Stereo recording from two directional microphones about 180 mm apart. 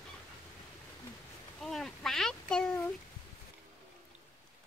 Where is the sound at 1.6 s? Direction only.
Centre (ahead or behind).